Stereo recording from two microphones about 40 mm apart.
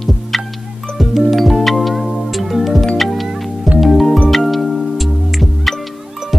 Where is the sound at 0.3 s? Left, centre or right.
Centre.